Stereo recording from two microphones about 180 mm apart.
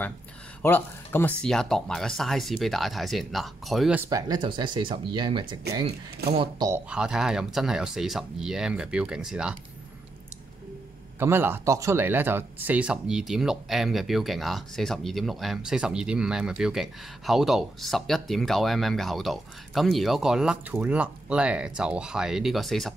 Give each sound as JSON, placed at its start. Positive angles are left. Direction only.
{"t": 0.6, "sound": "speech", "side_deg": 10}
{"t": 4.1, "sound": "speech", "side_deg": -25}
{"t": 6.7, "sound": "speech", "side_deg": -5}
{"t": 11.1, "sound": "speech", "side_deg": -15}